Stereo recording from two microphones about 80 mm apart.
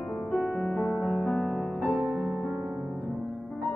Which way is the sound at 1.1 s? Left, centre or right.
Centre.